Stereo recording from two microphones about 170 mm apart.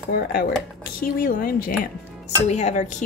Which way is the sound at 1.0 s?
60° left (ahead or behind).